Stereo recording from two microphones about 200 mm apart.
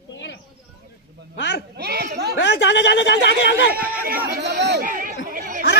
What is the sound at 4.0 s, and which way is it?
Chatter, 50° right (ahead or behind).